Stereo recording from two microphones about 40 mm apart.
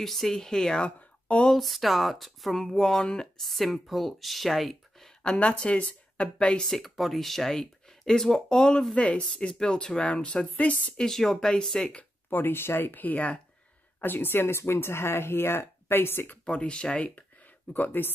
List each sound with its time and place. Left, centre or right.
0.0 s speech: centre
0.7 s speech: left
1.6 s speech: centre
3.0 s speech: left
3.3 s speech: centre
5.2 s a woman's voice: left
6.6 s speech: centre
8.9 s speech: left
11.0 s speech: centre
12.3 s speech: left
14.0 s speech: left
16.4 s speech: left
17.7 s speech: left